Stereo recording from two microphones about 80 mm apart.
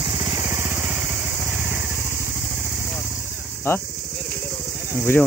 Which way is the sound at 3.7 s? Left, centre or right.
Left.